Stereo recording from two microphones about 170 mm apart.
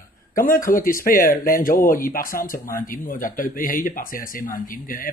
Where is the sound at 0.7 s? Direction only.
55° left (ahead or behind).